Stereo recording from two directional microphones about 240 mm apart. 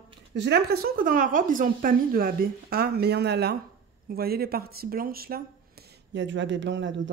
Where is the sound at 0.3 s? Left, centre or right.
Right.